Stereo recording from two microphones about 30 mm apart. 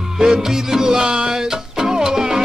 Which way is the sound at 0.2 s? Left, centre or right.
Centre.